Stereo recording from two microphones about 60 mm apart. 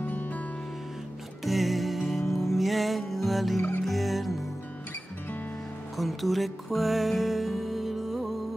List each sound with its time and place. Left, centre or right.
0.0 s music: left
1.4 s music: centre
5.9 s music: centre